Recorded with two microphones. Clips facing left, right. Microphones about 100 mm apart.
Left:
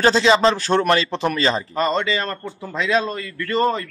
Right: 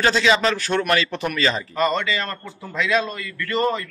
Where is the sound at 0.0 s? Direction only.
30° left (ahead or behind).